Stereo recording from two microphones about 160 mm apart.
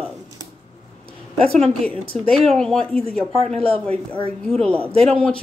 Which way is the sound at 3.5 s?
40° right (ahead or behind).